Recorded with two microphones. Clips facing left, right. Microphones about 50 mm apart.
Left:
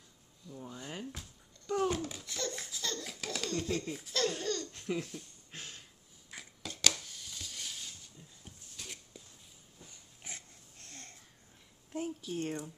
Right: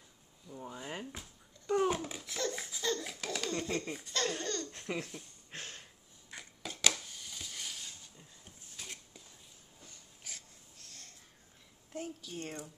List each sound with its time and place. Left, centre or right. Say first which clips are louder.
0.5 s speech: right 1 dB; centre
1.7 s babbling: right 1 dB; centre
3.2 s laughter: even; centre
4.9 s speech: left 3 dB; right
6.3 s a sound: right 1 dB; centre
10.2 s wheeze: left 3 dB; left
11.9 s a sound: left 4 dB; centre